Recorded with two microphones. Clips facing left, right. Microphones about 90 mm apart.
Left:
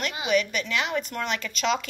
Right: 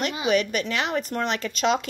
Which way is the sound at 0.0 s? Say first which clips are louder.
Right 2 dB; 40° right (ahead or behind).